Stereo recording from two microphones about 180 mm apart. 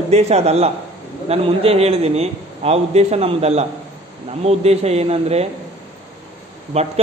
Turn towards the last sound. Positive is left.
turn(degrees=-35)  # may be behind; listen again after turning